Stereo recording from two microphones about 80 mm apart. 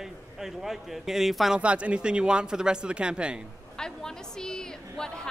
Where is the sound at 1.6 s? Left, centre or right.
Centre.